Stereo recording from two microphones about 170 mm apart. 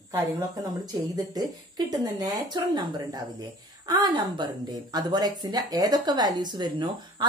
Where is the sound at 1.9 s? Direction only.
20° right (ahead or behind).